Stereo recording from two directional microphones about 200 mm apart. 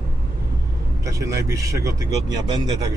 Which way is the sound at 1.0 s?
15° right (ahead or behind).